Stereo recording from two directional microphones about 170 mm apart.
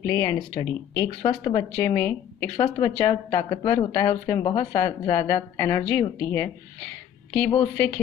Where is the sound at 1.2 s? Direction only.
25° left (ahead or behind).